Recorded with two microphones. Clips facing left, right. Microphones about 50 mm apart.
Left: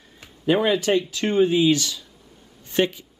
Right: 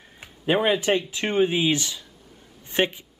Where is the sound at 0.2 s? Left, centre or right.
Right.